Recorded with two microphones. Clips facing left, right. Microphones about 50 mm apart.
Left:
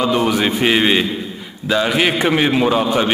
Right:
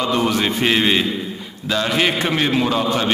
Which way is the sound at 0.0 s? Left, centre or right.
Centre.